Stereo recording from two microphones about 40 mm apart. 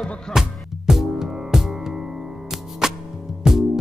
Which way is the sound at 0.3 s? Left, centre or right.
Centre.